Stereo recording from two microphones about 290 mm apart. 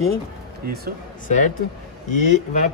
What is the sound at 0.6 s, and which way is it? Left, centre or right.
Speech, right.